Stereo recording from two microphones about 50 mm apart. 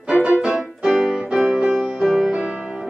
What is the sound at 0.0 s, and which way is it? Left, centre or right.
Music, right.